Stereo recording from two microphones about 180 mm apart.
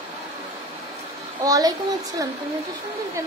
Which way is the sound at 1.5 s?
20° right (ahead or behind).